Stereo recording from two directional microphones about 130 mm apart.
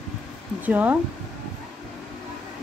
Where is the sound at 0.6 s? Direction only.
10° right (ahead or behind).